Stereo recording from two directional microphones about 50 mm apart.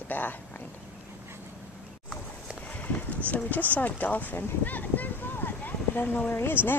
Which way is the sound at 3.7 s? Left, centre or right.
Left.